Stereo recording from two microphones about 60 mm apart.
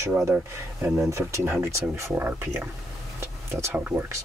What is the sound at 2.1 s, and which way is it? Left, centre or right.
Speech, right.